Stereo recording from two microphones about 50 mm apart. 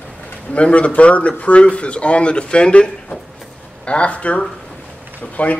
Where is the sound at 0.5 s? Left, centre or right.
Left.